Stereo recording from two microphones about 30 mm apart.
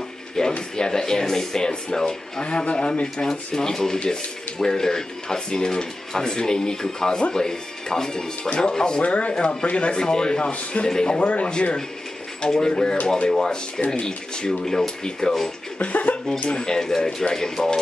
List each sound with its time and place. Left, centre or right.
0.4 s a sound: centre
0.7 s speech: left
2.7 s speech: left
9.0 s speech: left
9.4 s speech: left
9.9 s speech: left
10.4 s speech: left
10.9 s speech: left
11.1 s speech: left
12.4 s speech: left
14.0 s speech: left
15.8 s speech: left
16.4 s speech: left